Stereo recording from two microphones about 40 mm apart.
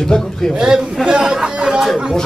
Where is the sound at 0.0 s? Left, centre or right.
Centre.